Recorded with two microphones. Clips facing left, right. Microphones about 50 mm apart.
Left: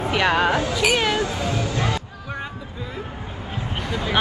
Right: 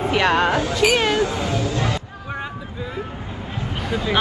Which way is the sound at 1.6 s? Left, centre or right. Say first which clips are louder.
Right 1 dB; left.